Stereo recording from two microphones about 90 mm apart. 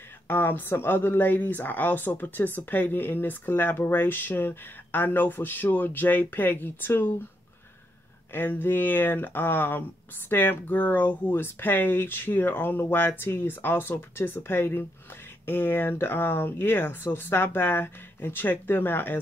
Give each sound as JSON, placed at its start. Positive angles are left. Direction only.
{"t": 0.3, "sound": "speech", "side_deg": 25}
{"t": 8.3, "sound": "speech", "side_deg": 20}